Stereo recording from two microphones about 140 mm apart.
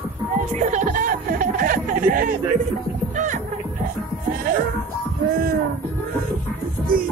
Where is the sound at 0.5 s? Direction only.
60° right (ahead or behind); by 2.3 s 85° right.